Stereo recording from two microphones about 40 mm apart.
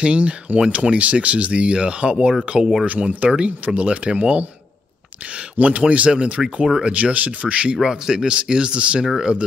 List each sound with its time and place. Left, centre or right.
0.0 s speech: right
7.9 s speech: centre